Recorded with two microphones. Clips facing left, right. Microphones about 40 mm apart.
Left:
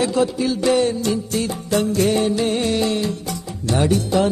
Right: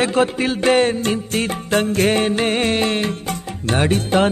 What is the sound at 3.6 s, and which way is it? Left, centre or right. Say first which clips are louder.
Speech: even; right.